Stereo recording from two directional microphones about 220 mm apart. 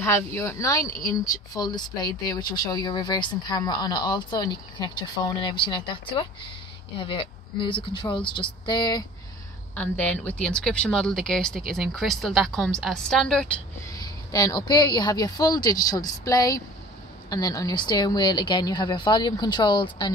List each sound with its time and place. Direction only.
0.0 s a woman's voice: 10° left (ahead or behind)
9.8 s speech: 5° left (ahead or behind)
13.9 s a woman's voice: 15° left (ahead or behind)